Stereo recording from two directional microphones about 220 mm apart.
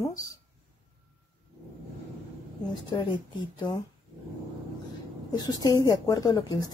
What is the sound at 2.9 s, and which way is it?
Speech, 20° left (ahead or behind).